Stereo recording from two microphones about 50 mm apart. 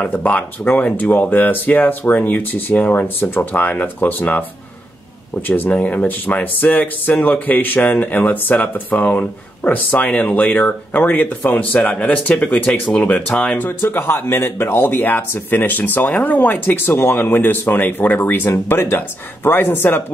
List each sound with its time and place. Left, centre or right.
0.2 s speech: left
5.5 s speech: left
13.6 s speech: left